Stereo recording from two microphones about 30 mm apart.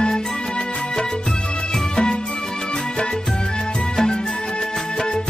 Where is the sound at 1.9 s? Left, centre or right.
Left.